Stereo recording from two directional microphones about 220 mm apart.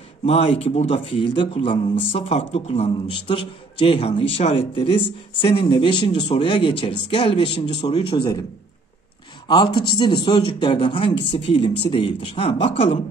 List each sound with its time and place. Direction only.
0.2 s speech: 30° left (ahead or behind)
9.5 s speech: 20° left (ahead or behind)